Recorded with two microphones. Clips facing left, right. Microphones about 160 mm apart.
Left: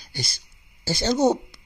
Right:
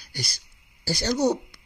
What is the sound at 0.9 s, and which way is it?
Speech, 25° left (ahead or behind).